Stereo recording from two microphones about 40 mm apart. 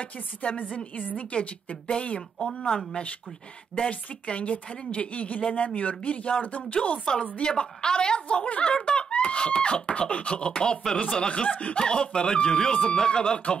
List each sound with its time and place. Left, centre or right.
0.0 s speech: left
3.9 s speech: left
8.7 s screaming: left
9.1 s speech: left
11.2 s speech: left
11.8 s speech: left